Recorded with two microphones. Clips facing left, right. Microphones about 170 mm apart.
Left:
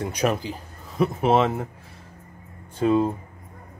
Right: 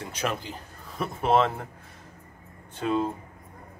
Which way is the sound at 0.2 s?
40° left (ahead or behind).